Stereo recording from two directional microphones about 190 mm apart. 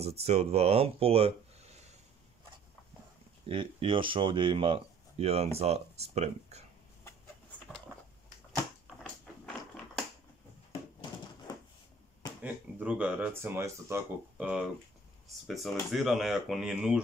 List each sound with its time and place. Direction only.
0.2 s speech: 35° right (ahead or behind)
3.4 s speech: 25° right (ahead or behind)
12.4 s speech: 10° right (ahead or behind)